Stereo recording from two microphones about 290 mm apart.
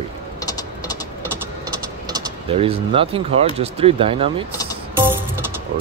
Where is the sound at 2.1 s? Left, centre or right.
Centre.